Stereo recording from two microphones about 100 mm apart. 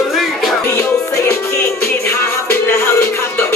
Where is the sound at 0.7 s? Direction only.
30° left (ahead or behind).